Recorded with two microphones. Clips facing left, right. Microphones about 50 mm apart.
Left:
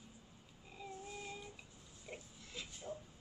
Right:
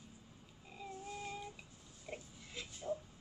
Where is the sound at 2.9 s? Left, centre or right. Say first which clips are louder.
Right 7 dB; centre.